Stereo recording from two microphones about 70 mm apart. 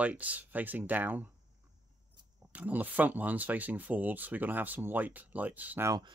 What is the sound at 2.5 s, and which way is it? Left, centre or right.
Speech, right.